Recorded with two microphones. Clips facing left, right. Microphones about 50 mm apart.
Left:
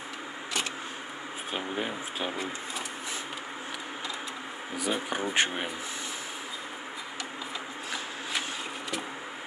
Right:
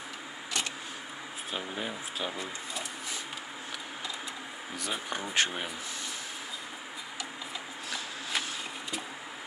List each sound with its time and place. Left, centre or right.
1.5 s speech: left
4.7 s speech: centre